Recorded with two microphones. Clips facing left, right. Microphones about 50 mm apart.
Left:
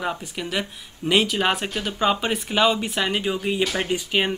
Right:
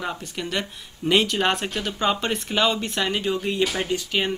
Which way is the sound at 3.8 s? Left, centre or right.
Centre.